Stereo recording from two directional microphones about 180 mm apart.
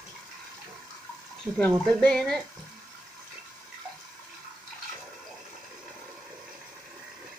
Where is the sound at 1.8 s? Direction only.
5° left (ahead or behind).